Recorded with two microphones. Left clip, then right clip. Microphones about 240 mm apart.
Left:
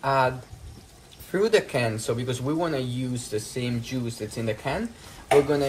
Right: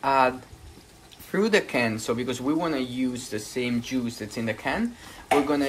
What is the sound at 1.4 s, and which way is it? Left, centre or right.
Speech, right.